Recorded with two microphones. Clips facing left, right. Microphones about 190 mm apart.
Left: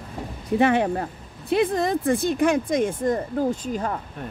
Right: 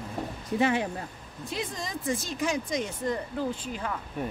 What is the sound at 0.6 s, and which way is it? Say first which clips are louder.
Speech: left 6 dB; 60° left (ahead or behind).